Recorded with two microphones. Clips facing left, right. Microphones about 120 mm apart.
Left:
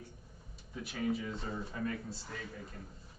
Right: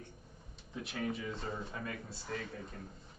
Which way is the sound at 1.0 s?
Centre (ahead or behind).